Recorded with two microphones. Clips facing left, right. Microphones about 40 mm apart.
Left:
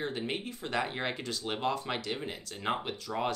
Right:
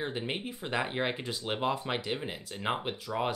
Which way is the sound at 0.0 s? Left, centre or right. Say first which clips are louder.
Even; centre.